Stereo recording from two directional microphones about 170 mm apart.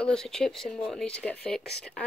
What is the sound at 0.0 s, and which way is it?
Speech, 5° left (ahead or behind).